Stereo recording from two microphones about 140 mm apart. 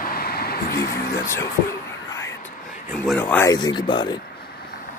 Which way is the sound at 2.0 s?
20° left (ahead or behind).